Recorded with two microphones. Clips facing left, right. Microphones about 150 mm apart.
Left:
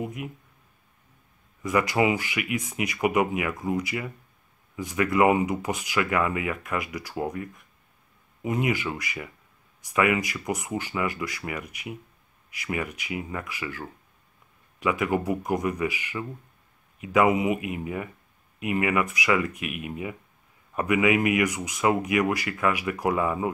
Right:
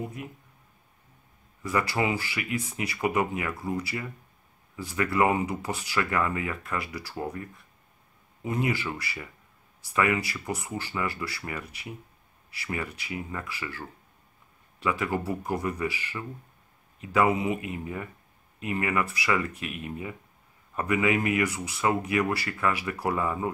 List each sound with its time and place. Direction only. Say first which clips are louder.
1.6 s speech: left 4 dB; 15° left (ahead or behind)